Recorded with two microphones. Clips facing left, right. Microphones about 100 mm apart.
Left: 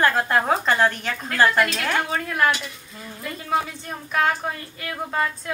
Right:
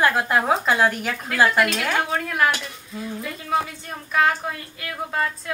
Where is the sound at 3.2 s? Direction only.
Centre (ahead or behind).